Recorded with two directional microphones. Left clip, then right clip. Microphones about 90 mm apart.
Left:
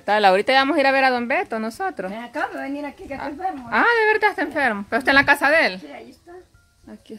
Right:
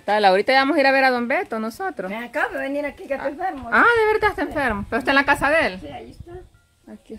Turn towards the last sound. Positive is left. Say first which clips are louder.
# even
turn(degrees=5)  # may be behind; listen again after turning